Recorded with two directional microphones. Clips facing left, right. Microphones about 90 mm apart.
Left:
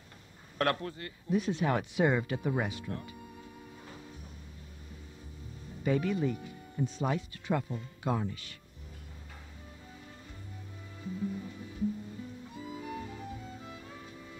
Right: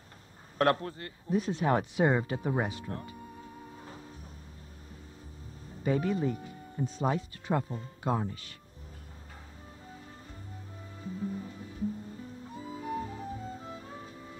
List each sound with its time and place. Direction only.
0.6 s speech: 30° right (ahead or behind)
5.9 s speech: 35° right (ahead or behind)
11.1 s music: 35° right (ahead or behind)